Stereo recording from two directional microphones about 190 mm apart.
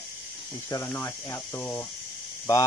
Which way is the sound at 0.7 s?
10° left (ahead or behind).